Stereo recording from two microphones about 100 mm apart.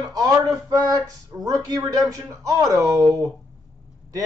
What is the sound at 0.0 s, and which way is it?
Speech, 40° right (ahead or behind).